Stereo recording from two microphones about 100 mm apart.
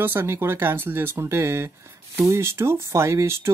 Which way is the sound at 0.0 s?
20° right (ahead or behind).